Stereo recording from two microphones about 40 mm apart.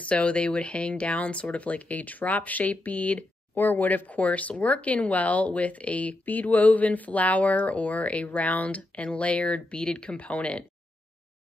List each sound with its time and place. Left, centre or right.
0.0 s speech: left
3.5 s speech: left
4.2 s speech: left